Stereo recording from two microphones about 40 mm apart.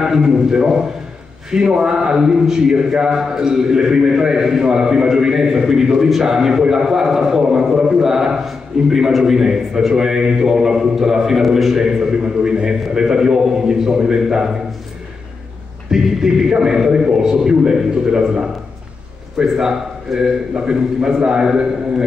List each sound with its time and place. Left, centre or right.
0.0 s a man's voice: centre
15.9 s a man's voice: centre